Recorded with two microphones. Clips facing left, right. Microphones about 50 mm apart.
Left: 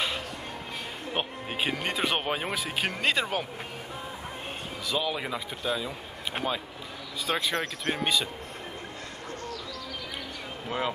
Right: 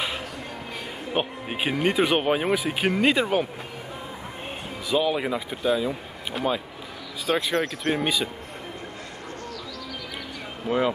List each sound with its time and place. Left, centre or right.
1.1 s speech: centre
4.8 s speech: centre
6.4 s speech: left
7.2 s speech: centre
7.5 s speech: right
7.9 s speech: centre